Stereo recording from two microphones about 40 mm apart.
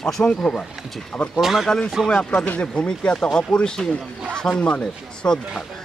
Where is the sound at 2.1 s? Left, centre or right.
Left.